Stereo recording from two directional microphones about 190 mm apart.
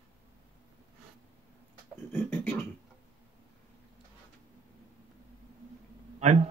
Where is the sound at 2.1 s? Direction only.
5° left (ahead or behind).